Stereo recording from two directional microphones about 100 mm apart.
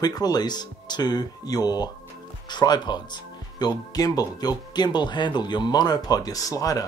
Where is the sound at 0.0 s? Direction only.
40° left (ahead or behind).